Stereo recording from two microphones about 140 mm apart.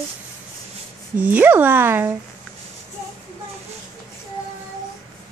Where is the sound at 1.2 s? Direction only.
15° right (ahead or behind).